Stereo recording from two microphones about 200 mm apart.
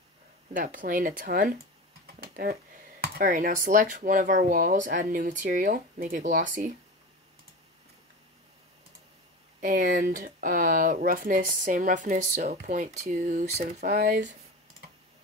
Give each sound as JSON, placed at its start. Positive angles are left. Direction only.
{"t": 0.5, "sound": "speech", "side_deg": -40}
{"t": 2.1, "sound": "a sound", "side_deg": -50}
{"t": 3.0, "sound": "speech", "side_deg": -45}
{"t": 9.6, "sound": "speech", "side_deg": -40}
{"t": 13.8, "sound": "speech", "side_deg": -50}